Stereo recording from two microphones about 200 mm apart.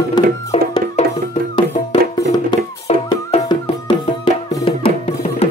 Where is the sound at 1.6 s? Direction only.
20° left (ahead or behind).